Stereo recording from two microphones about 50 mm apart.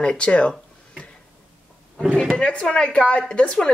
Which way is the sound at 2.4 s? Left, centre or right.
Centre.